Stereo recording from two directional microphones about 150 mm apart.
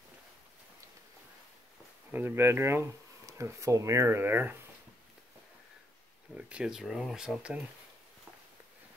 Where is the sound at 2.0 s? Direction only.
15° right (ahead or behind).